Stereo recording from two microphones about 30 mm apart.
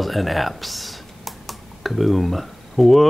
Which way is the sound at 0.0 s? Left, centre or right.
Centre.